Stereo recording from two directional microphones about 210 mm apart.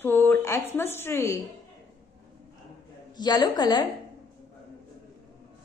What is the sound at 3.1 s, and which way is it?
Speech, 20° left (ahead or behind).